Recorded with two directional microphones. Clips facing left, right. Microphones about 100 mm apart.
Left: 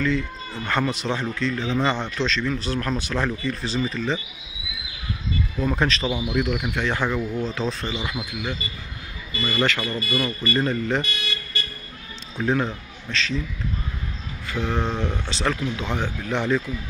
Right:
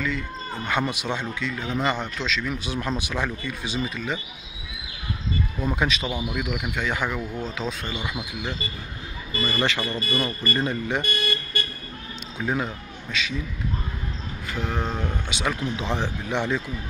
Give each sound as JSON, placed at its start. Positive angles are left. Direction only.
{"t": 0.7, "sound": "speech", "side_deg": -10}
{"t": 5.7, "sound": "speech", "side_deg": -10}
{"t": 6.0, "sound": "speech", "side_deg": 0}
{"t": 9.5, "sound": "speech", "side_deg": -20}
{"t": 9.9, "sound": "speech", "side_deg": -30}
{"t": 10.6, "sound": "speech", "side_deg": -15}
{"t": 11.1, "sound": "car alarm", "side_deg": -50}
{"t": 12.5, "sound": "a man's voice", "side_deg": -10}
{"t": 14.6, "sound": "speech", "side_deg": -5}
{"t": 15.5, "sound": "speech", "side_deg": -25}